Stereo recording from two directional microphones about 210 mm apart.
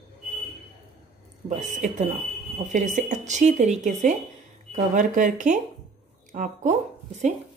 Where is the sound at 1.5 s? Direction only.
35° right (ahead or behind).